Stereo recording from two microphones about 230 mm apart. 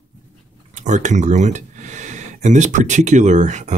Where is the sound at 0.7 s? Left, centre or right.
Right.